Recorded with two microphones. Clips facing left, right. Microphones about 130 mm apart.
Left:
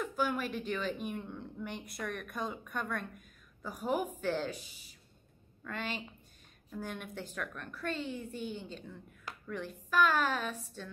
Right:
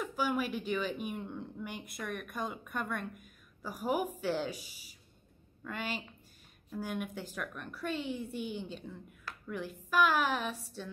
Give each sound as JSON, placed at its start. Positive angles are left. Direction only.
{"t": 0.0, "sound": "a woman's voice", "side_deg": -5}